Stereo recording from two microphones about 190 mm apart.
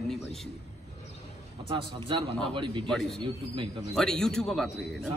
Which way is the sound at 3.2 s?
25° right (ahead or behind).